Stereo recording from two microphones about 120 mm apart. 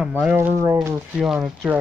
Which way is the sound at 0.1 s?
15° right (ahead or behind).